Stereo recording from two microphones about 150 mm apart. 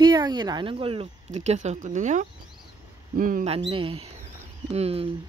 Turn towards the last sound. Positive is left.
turn(degrees=-40)  # may be behind; listen again after turning